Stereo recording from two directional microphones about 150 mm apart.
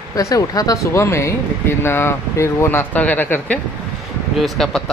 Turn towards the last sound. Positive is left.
turn(degrees=0)  # may be behind; listen again after turning